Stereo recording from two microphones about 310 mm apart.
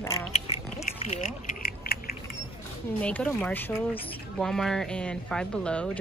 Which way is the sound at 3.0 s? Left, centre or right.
Centre.